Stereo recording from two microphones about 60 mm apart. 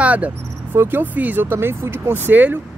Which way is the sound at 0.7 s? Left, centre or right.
Right.